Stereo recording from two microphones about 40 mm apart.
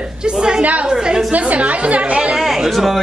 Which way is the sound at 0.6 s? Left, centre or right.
Right.